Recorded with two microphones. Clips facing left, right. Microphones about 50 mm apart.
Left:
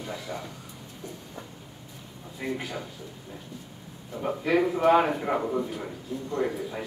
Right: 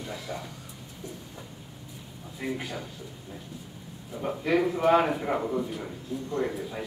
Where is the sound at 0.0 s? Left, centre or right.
Centre.